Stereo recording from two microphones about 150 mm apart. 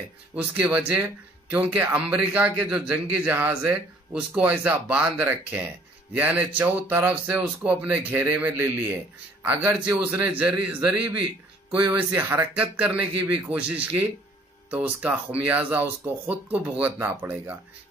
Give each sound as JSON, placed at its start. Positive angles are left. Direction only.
{"t": 0.4, "sound": "a man's voice", "side_deg": -10}